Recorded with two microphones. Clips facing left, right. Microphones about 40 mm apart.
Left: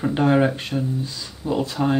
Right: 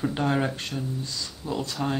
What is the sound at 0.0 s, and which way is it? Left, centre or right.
Speech, centre.